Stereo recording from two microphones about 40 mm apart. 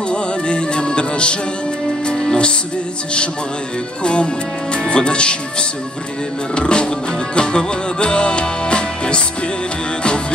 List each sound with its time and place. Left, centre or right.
0.1 s music: left
4.0 s music: left
4.7 s speech: left
6.5 s music: left